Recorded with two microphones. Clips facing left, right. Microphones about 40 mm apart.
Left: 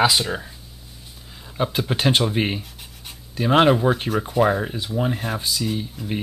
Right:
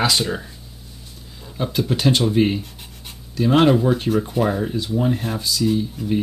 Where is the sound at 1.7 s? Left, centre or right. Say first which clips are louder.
Right 2 dB; left.